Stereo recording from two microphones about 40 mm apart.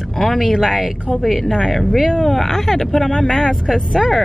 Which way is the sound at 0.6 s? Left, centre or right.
Centre.